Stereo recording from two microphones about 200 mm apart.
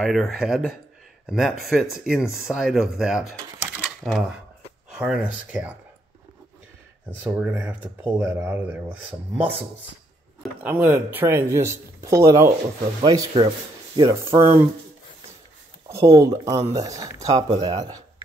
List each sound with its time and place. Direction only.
0.0 s speech: centre (ahead or behind)
7.2 s speech: 10° right (ahead or behind)
15.9 s speech: 15° right (ahead or behind)